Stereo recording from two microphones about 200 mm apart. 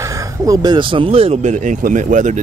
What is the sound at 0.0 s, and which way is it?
Speech, 15° right (ahead or behind).